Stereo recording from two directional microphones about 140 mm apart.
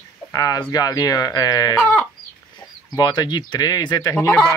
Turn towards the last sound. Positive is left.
turn(degrees=20)  # may be behind; listen again after turning